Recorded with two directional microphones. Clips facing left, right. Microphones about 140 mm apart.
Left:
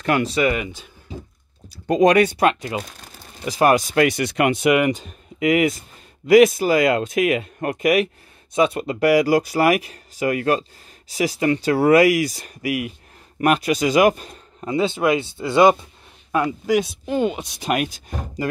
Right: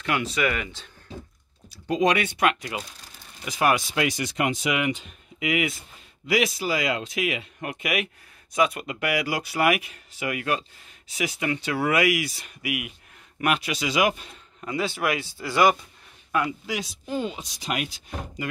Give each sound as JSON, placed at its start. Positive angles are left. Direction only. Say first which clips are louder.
{"t": 0.0, "sound": "speech", "louder": "left 6 dB", "side_deg": 40}
{"t": 0.5, "sound": "speech", "louder": "left 6 dB", "side_deg": 15}
{"t": 1.7, "sound": "a man's voice", "louder": "left 7 dB", "side_deg": 45}
{"t": 14.7, "sound": "speech", "louder": "left 7 dB", "side_deg": 25}
{"t": 16.3, "sound": "a sound", "louder": "left 4 dB", "side_deg": 30}
{"t": 16.6, "sound": "speech", "louder": "left 12 dB", "side_deg": 55}